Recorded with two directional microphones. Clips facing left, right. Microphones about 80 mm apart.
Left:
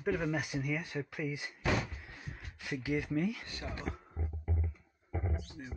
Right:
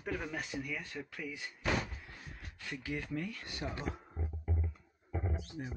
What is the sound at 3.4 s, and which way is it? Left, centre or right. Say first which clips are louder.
Speech: right 1 dB; centre.